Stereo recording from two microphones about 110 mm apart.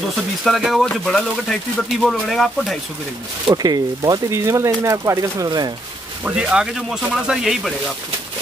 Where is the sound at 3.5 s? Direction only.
35° right (ahead or behind).